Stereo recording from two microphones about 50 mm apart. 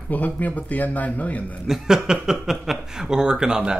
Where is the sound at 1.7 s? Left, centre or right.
Centre.